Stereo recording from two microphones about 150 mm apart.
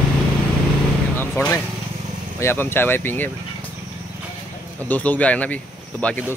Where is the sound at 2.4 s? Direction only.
15° left (ahead or behind).